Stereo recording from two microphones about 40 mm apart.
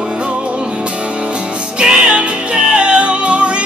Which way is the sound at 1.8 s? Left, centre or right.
Right.